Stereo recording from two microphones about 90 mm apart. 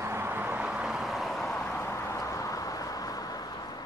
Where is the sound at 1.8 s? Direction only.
35° left (ahead or behind).